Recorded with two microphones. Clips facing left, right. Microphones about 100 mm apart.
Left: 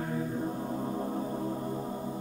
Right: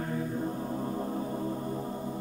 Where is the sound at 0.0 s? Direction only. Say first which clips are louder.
Even; 5° left (ahead or behind).